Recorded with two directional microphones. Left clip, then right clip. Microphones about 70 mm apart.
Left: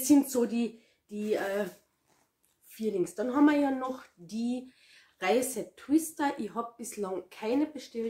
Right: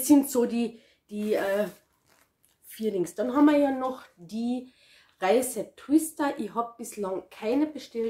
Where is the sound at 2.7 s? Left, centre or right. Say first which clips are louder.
Right 3 dB; centre.